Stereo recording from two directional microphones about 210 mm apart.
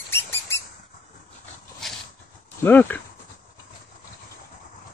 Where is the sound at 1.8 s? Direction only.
Centre (ahead or behind).